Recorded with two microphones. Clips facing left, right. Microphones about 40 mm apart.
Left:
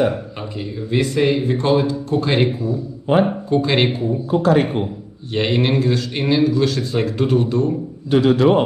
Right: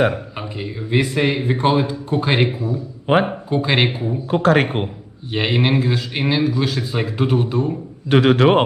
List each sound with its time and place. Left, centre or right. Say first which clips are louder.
0.6 s a man's voice: even; centre
4.3 s a man's voice: even; right
5.3 s a man's voice: even; centre
8.1 s a man's voice: right 1 dB; right